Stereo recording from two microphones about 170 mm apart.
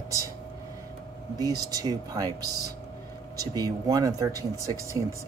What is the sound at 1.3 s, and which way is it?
Speech, 20° right (ahead or behind).